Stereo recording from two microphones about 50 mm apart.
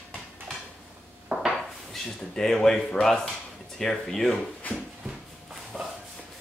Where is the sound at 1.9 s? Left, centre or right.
Centre.